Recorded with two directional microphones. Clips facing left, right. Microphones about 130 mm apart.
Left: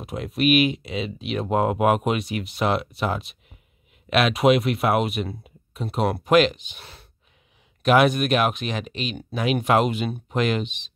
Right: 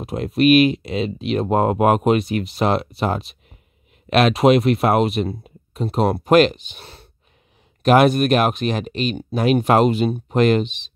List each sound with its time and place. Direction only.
0.0 s speech: 35° right (ahead or behind)